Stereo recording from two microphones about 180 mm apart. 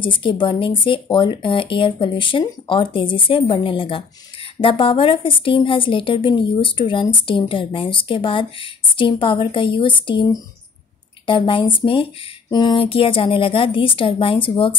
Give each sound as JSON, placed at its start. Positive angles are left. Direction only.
{"t": 0.0, "sound": "speech", "side_deg": 30}